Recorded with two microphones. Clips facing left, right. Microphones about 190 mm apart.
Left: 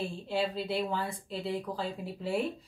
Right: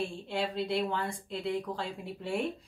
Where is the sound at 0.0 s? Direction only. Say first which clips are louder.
Left 1 dB; 5° left (ahead or behind).